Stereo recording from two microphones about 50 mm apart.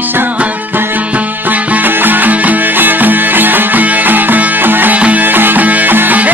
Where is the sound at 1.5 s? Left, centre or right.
Right.